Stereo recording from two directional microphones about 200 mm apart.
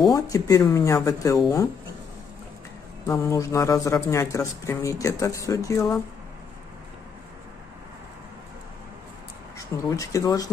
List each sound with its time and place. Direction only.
0.1 s speech: 15° left (ahead or behind)
3.1 s speech: 15° left (ahead or behind)
9.6 s speech: 15° left (ahead or behind)